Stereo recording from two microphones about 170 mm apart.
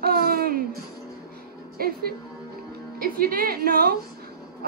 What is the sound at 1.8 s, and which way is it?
Speech, 60° right (ahead or behind).